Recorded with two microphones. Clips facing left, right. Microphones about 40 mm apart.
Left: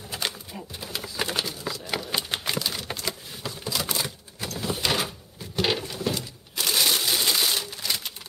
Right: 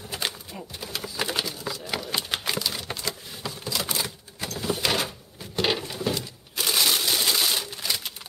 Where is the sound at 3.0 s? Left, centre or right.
Centre.